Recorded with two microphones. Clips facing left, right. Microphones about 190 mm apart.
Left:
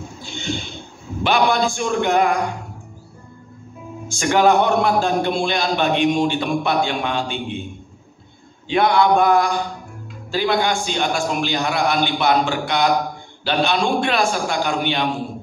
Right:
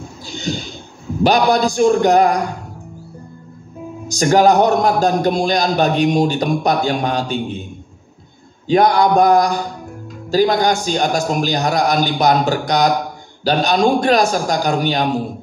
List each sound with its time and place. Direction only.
0.2 s a sound: 40° right (ahead or behind)
1.2 s a man's voice: 40° right (ahead or behind)
4.1 s a man's voice: 40° right (ahead or behind)
8.6 s a man's voice: 40° right (ahead or behind)